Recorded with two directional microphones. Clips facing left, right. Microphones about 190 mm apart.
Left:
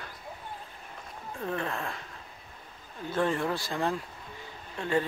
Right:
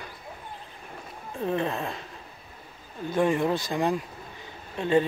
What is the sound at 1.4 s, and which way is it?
Speech, 20° right (ahead or behind).